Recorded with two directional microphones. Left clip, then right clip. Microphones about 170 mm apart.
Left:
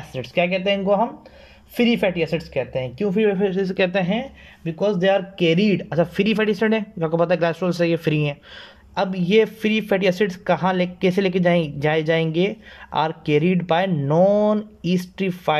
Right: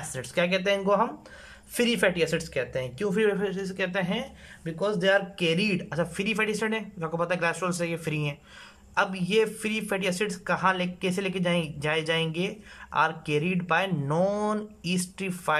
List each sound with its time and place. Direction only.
0.1 s speech: 10° left (ahead or behind)
3.4 s speech: 25° left (ahead or behind)